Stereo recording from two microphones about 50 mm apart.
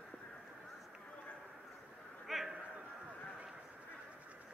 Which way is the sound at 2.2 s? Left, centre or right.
Centre.